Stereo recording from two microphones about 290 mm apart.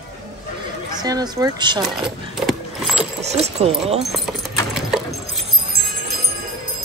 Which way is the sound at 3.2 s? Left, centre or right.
Right.